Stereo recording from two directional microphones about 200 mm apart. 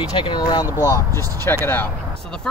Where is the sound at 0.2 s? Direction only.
20° left (ahead or behind).